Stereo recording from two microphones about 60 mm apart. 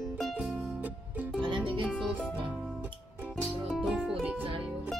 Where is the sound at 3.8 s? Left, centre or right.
Centre.